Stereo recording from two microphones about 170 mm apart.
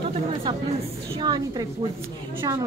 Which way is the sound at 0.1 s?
30° right (ahead or behind).